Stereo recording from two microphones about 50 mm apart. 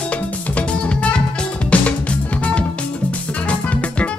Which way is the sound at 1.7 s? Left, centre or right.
Left.